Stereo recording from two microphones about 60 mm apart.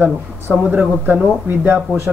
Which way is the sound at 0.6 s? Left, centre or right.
Right.